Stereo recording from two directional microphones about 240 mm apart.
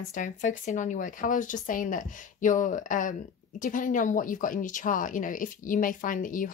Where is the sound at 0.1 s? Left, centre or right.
Left.